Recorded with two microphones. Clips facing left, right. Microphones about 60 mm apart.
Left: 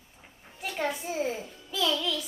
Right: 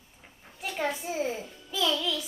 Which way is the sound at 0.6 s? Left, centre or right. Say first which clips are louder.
Even; centre.